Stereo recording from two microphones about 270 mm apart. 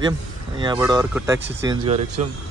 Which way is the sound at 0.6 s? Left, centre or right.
Centre.